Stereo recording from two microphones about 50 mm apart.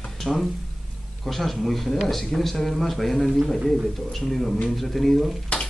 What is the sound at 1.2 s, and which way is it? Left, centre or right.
Speech, centre.